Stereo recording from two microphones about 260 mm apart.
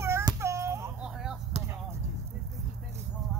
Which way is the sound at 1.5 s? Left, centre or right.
Right.